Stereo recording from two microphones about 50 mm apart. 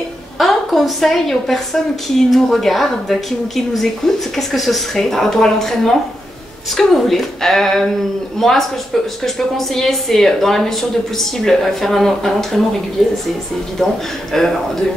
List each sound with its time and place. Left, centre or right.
0.4 s a woman's voice: centre
14.3 s speech: centre